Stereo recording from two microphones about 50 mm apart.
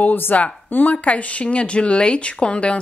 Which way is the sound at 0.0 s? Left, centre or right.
Left.